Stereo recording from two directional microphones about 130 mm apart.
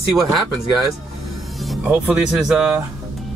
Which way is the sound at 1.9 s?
5° right (ahead or behind).